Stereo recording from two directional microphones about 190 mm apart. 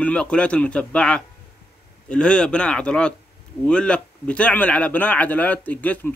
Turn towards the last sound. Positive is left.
turn(degrees=10)  # may be behind; listen again after turning